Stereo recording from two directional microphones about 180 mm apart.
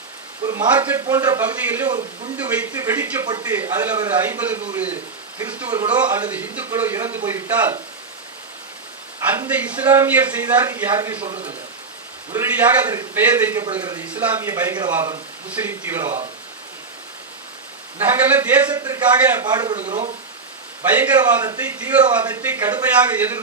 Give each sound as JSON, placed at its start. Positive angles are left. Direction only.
{"t": 0.4, "sound": "a man's voice", "side_deg": -25}
{"t": 0.7, "sound": "a man's voice", "side_deg": -10}
{"t": 1.0, "sound": "a man's voice", "side_deg": -20}
{"t": 1.4, "sound": "a man's voice", "side_deg": -10}
{"t": 9.3, "sound": "a man's voice", "side_deg": -10}
{"t": 12.3, "sound": "a man's voice", "side_deg": -15}
{"t": 17.9, "sound": "a man's voice", "side_deg": -10}
{"t": 18.7, "sound": "a man's voice", "side_deg": -20}
{"t": 21.2, "sound": "a man's voice", "side_deg": -25}
{"t": 21.5, "sound": "a man's voice", "side_deg": -10}